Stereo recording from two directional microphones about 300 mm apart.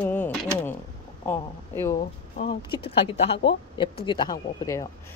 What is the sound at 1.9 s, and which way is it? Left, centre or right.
Speech, left.